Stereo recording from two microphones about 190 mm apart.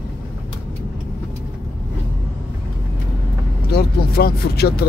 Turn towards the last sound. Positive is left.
turn(degrees=55)  # may be behind; listen again after turning